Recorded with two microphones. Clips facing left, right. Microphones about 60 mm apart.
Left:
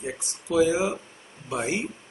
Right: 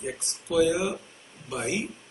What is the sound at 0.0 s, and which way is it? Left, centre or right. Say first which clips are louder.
Speech: left 1 dB; centre.